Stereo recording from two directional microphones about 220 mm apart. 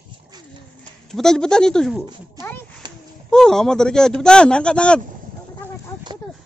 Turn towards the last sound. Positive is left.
turn(degrees=5)  # may be behind; listen again after turning